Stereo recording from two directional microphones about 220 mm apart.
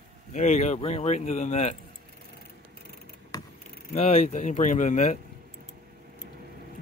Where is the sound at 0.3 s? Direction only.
30° left (ahead or behind).